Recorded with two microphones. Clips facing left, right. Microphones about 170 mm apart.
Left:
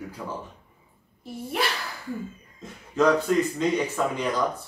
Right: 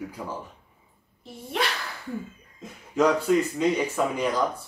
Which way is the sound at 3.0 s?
10° right (ahead or behind).